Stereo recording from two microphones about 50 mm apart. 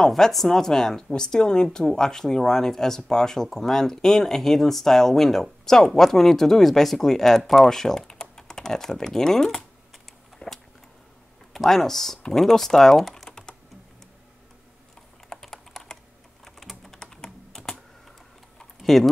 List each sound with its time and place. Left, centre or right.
0.0 s speech: centre
10.4 s a sound: left
11.5 s speech: centre
15.2 s typing: centre
18.8 s typing: centre